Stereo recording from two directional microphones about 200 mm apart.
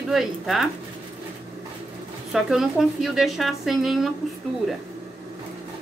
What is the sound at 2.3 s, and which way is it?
Speech, centre (ahead or behind).